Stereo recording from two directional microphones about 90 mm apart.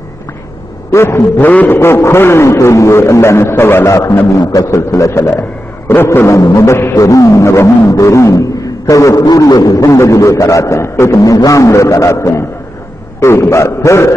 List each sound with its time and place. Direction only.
0.9 s a sound: 25° left (ahead or behind)
4.3 s a man's voice: 40° left (ahead or behind)
7.9 s beatboxing: 35° left (ahead or behind)
9.4 s a man's voice: 45° left (ahead or behind)